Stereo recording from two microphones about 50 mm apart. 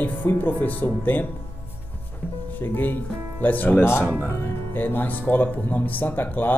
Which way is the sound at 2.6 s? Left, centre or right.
Left.